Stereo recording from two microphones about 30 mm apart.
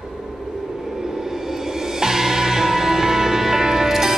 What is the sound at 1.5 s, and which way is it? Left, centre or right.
Music, centre.